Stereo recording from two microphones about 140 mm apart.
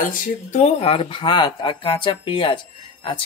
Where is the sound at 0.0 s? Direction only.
75° left (ahead or behind).